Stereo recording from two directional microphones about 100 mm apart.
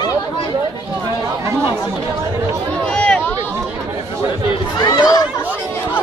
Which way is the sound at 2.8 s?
15° left (ahead or behind).